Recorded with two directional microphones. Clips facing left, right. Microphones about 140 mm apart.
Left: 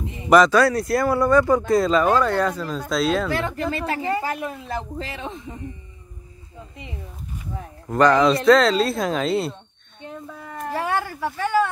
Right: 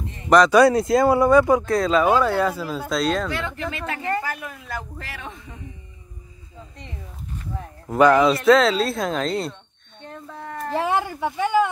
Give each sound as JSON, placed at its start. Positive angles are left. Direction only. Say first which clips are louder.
{"t": 0.0, "sound": "a sound", "louder": "left 1 dB", "side_deg": 10}
{"t": 0.5, "sound": "speech", "louder": "right 3 dB", "side_deg": -20}
{"t": 1.7, "sound": "speech", "louder": "left 1 dB", "side_deg": 0}
{"t": 3.3, "sound": "speech", "louder": "left 4 dB", "side_deg": 40}
{"t": 7.5, "sound": "speech", "louder": "right 1 dB", "side_deg": 0}
{"t": 10.0, "sound": "a sound", "louder": "even", "side_deg": 5}
{"t": 10.7, "sound": "speech", "louder": "right 2 dB", "side_deg": -20}